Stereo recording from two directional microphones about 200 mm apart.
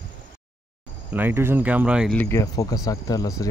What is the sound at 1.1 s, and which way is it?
Speech, 10° right (ahead or behind).